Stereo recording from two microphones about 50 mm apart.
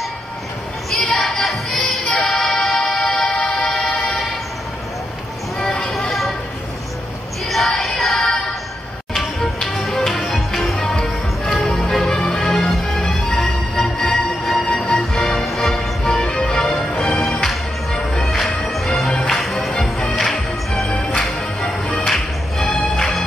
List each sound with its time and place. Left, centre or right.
0.8 s music: centre
3.3 s vehicle: centre
5.6 s a sound: centre
7.4 s music: centre
11.0 s music: left
11.6 s music: centre
12.7 s music: centre
16.0 s music: centre
19.0 s music: left
19.3 s music: centre